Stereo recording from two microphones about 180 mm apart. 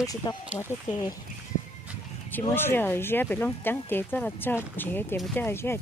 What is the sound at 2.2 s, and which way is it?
Speech, 10° left (ahead or behind).